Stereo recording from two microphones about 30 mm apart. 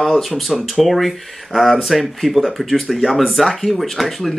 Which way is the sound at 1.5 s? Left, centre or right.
Centre.